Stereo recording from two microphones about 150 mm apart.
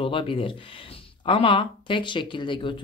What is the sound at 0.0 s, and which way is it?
Speech, 35° left (ahead or behind).